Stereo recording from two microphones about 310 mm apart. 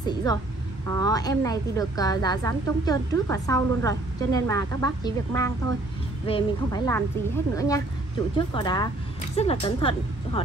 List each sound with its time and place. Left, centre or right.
0.0 s a woman's voice: centre